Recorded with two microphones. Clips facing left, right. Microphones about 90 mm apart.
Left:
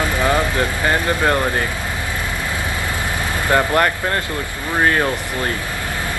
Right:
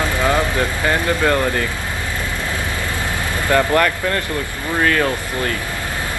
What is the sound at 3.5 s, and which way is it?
Speech, 20° left (ahead or behind).